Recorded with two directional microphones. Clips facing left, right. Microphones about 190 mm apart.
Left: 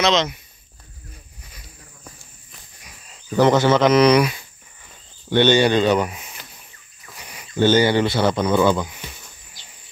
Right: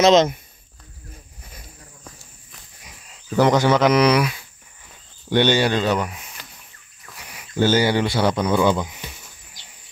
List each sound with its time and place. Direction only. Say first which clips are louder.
0.0 s speech: right 5 dB; 45° right (ahead or behind)
3.1 s speech: left 1 dB; 10° right (ahead or behind)